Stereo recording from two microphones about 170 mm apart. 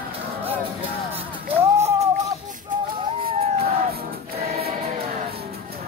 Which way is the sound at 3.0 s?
30° right (ahead or behind).